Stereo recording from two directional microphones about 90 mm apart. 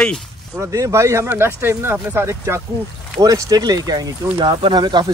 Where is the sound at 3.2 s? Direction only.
40° right (ahead or behind).